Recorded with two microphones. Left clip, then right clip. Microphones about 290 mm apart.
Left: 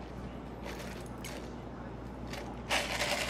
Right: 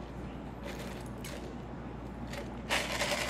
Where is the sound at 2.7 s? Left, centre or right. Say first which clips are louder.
Even; centre.